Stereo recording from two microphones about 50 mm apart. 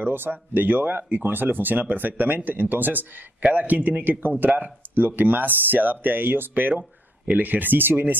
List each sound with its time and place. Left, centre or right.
0.0 s speech: right